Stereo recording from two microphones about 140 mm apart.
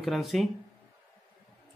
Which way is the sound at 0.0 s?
Centre (ahead or behind).